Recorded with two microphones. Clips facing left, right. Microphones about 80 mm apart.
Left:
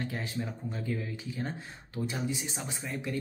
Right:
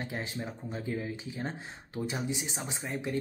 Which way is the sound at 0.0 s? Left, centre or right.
Right.